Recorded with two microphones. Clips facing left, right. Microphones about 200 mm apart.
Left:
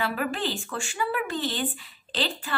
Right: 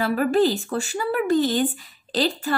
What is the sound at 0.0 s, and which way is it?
Speech, 40° right (ahead or behind).